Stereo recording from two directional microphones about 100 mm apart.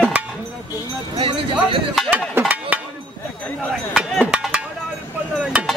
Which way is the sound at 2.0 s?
15° right (ahead or behind).